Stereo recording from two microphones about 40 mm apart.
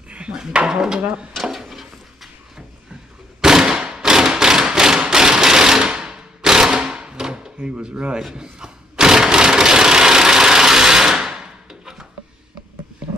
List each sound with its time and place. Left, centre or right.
0.3 s speech: right
1.3 s drawer open or close: centre
3.3 s a sound: centre
3.8 s thump: centre
5.1 s machine gun: centre
8.4 s a sound: centre